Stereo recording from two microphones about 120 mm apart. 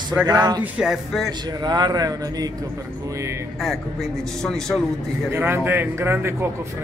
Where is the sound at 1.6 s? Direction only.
35° right (ahead or behind).